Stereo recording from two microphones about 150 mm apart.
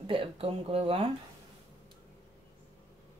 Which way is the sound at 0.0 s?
35° right (ahead or behind).